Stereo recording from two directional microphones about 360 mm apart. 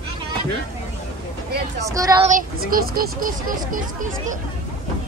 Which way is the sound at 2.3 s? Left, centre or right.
Right.